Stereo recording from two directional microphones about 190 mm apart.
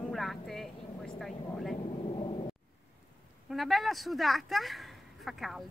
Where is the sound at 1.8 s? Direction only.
30° left (ahead or behind).